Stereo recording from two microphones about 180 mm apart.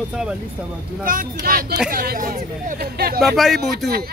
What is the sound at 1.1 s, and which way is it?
Speech, 50° right (ahead or behind).